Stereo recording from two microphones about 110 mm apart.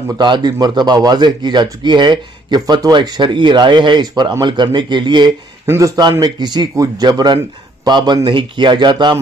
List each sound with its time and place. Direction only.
0.2 s a man's voice: 40° right (ahead or behind)
5.7 s a man's voice: 30° right (ahead or behind)
6.1 s a man's voice: 40° right (ahead or behind)